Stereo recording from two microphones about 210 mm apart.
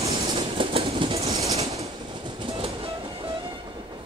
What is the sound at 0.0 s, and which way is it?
Train, 30° right (ahead or behind).